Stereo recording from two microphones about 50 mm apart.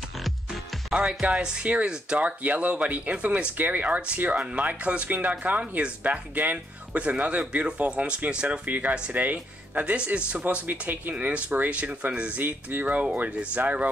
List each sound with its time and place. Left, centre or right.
0.2 s music: centre
0.9 s speech: right
8.6 s speech: right
10.7 s speech: right
12.4 s speech: right